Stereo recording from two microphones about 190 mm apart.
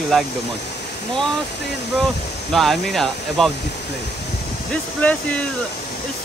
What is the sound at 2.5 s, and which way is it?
Speech, centre (ahead or behind).